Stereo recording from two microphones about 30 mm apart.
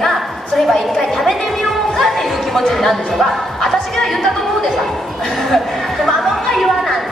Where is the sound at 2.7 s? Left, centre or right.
Centre.